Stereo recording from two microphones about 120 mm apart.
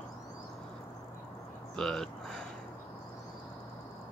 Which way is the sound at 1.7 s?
5° left (ahead or behind).